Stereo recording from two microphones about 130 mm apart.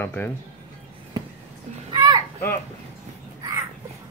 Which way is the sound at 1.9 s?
35° right (ahead or behind).